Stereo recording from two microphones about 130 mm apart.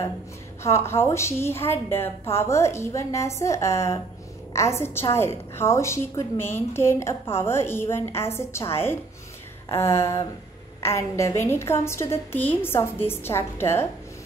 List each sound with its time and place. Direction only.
0.6 s a woman's voice: 20° left (ahead or behind)